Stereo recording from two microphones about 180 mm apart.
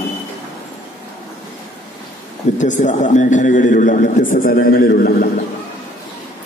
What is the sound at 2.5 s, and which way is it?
A man's voice, 45° left (ahead or behind).